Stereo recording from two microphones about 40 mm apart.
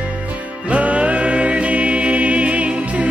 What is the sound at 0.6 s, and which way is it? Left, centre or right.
Music, right.